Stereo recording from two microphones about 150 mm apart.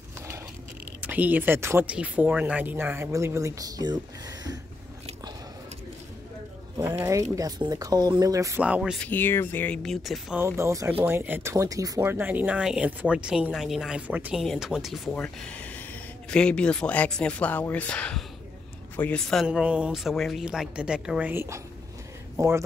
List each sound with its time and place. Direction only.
1.0 s speech: 10° right (ahead or behind); by 4.0 s 25° right (ahead or behind)
6.8 s speech: 20° right (ahead or behind)
8.6 s speech: 10° right (ahead or behind)
9.0 s speech: 15° left (ahead or behind)
9.8 s speech: centre (ahead or behind)
10.4 s speech: 20° right (ahead or behind); by 15.2 s centre (ahead or behind)
15.2 s speech: 10° left (ahead or behind)
19.4 s speech: 5° right (ahead or behind); by 22.5 s 20° right (ahead or behind)